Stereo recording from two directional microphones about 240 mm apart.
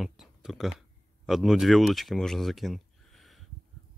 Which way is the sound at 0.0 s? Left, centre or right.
Centre.